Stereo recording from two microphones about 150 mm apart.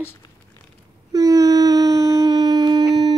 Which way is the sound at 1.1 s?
25° right (ahead or behind).